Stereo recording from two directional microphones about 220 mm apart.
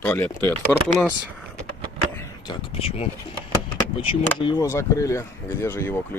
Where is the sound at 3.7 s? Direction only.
25° left (ahead or behind).